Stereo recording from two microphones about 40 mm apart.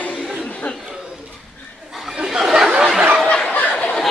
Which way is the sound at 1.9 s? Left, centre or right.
Centre.